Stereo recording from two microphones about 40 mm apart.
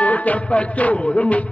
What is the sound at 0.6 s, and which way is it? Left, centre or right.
Speech, left.